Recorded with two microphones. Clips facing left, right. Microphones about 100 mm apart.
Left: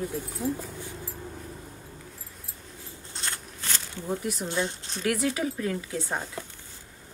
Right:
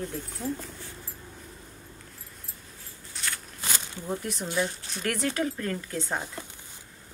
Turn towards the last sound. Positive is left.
turn(degrees=5)  # may be behind; listen again after turning